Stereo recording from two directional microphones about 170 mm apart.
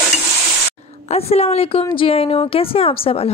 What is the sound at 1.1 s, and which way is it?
Speech, 35° left (ahead or behind).